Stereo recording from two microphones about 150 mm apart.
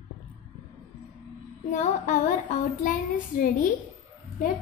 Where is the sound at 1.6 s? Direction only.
55° left (ahead or behind).